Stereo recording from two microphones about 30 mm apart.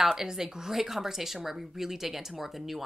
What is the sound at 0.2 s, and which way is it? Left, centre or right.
Speech, centre.